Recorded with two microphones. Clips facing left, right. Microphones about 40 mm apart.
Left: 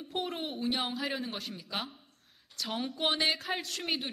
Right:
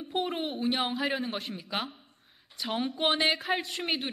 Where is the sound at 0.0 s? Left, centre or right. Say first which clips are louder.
Right 4 dB; centre.